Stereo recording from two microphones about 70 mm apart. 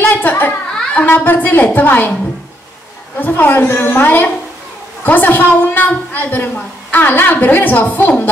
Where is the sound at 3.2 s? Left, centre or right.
Left.